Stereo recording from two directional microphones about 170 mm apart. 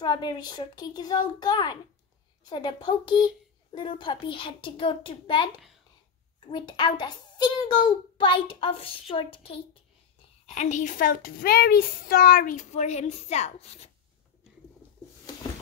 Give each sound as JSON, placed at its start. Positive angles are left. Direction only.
{"t": 0.0, "sound": "a child's voice", "side_deg": 25}
{"t": 10.4, "sound": "a child's voice", "side_deg": 45}